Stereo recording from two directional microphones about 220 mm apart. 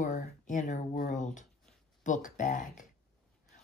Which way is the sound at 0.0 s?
35° left (ahead or behind).